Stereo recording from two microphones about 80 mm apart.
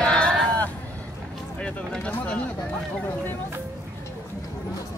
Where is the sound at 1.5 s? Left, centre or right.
Centre.